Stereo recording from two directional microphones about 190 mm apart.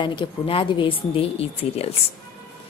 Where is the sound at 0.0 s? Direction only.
25° left (ahead or behind).